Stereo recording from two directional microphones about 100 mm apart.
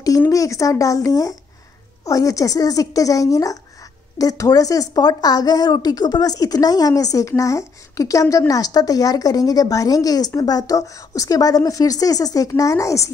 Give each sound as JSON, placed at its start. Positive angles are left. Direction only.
{"t": 0.3, "sound": "a woman's voice", "side_deg": 35}